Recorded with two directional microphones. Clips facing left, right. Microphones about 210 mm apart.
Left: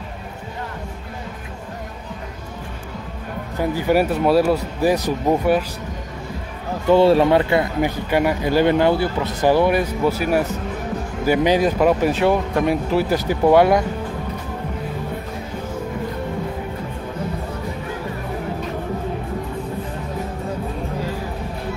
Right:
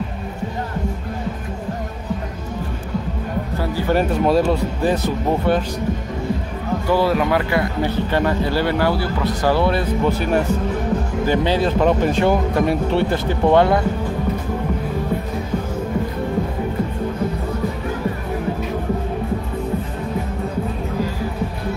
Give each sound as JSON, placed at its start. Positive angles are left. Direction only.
{"t": 3.5, "sound": "speech", "side_deg": 15}
{"t": 6.9, "sound": "speech", "side_deg": 25}